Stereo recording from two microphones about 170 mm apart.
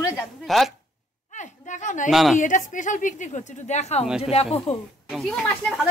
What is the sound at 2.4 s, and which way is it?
Speech, 50° left (ahead or behind).